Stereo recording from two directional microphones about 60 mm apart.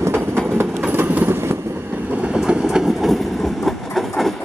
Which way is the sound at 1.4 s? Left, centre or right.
Right.